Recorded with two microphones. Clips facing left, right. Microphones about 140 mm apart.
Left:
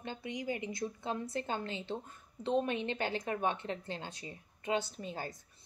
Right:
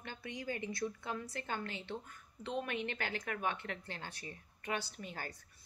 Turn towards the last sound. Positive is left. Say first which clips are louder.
# left 4 dB
turn(degrees=20)  # may be behind; listen again after turning